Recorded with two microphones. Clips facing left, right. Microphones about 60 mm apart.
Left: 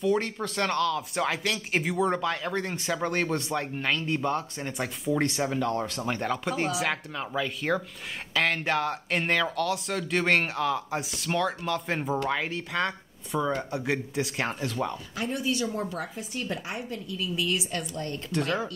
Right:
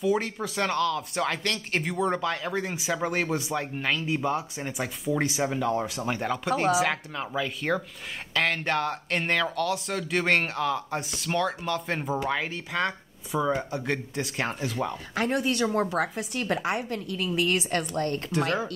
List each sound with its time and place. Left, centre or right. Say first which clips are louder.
0.0 s speech: even; centre
15.1 s a woman's voice: right 4 dB; right